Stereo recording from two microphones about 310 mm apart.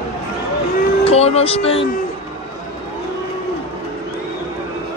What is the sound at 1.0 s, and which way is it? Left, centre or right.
Speech, centre.